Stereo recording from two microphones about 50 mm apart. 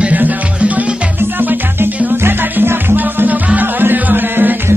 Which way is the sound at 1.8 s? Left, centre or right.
Right.